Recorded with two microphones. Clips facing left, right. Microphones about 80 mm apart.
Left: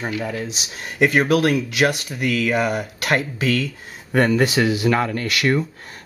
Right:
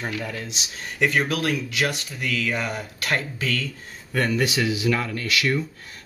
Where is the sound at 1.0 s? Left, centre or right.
Left.